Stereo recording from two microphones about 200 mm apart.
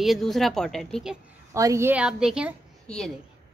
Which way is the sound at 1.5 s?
15° right (ahead or behind).